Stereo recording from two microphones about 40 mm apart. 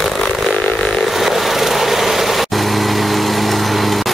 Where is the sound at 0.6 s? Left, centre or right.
Left.